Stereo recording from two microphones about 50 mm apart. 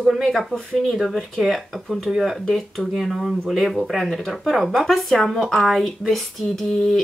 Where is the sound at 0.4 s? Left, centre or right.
Centre.